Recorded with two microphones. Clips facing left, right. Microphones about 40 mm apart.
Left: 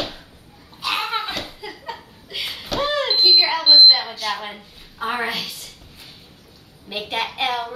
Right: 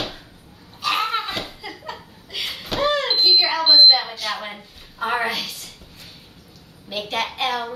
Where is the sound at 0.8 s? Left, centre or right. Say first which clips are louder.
Right 2 dB; centre.